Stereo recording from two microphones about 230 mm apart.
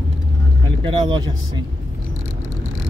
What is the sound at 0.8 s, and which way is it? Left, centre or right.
Speech, right.